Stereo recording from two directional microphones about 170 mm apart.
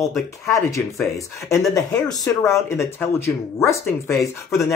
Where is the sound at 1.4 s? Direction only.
15° left (ahead or behind).